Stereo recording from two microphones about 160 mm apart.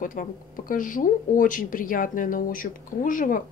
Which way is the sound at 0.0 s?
55° left (ahead or behind).